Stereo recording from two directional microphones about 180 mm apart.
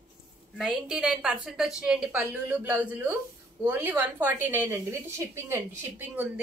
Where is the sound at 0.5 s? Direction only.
Centre (ahead or behind).